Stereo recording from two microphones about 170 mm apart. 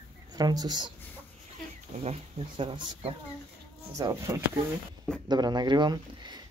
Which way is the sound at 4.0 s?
20° right (ahead or behind).